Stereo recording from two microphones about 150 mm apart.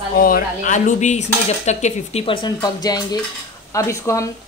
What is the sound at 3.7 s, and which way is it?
Speech, 20° left (ahead or behind).